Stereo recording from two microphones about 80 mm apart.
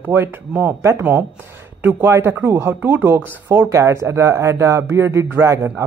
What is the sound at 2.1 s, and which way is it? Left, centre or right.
A man's voice, right.